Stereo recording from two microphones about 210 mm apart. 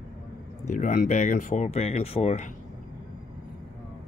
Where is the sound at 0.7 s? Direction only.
35° left (ahead or behind).